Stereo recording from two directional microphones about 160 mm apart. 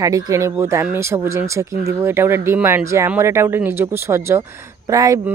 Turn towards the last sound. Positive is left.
turn(degrees=-20)  # may be behind; listen again after turning